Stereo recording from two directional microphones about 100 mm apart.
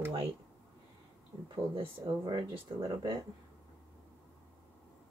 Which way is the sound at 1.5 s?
55° right (ahead or behind).